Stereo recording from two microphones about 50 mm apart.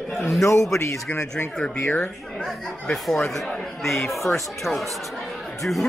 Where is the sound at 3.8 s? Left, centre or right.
Centre.